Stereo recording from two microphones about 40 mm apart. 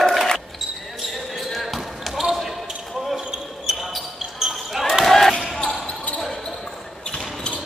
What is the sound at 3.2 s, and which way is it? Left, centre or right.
Basketball bounce, centre.